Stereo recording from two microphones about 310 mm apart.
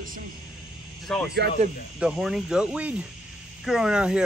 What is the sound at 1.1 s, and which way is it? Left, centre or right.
Speech, centre.